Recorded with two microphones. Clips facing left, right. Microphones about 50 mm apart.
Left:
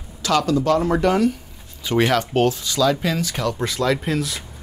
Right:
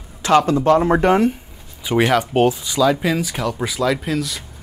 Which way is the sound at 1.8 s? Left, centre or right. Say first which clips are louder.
Right 2 dB; centre.